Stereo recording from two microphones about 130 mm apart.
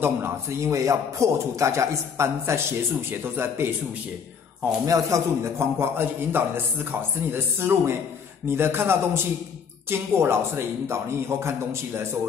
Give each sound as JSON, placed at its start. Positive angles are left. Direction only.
{"t": 0.0, "sound": "a man's voice", "side_deg": -20}
{"t": 4.8, "sound": "a man's voice", "side_deg": -25}